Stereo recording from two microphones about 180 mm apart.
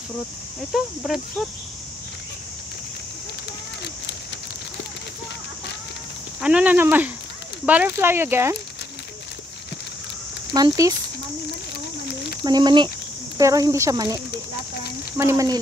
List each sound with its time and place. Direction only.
0.7 s speech: centre (ahead or behind)
6.4 s speech: 5° right (ahead or behind)
10.5 s speech: 20° right (ahead or behind)
12.4 s speech: 25° right (ahead or behind)